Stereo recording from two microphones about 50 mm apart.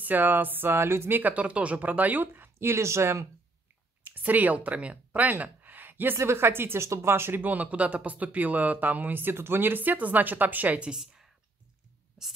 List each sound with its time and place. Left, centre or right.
0.0 s speech: right
1.2 s speech: right
2.6 s speech: right
4.1 s speech: right
5.4 s a sound: right
6.1 s speech: right
7.4 s speech: right
10.8 s speech: centre